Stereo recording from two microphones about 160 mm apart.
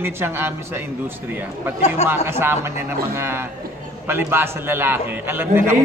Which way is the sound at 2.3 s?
15° right (ahead or behind).